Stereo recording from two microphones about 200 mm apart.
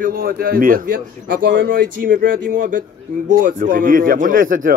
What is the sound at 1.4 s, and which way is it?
Speech, 65° right (ahead or behind).